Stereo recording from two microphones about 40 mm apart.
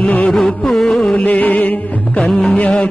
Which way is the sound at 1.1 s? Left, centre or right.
Left.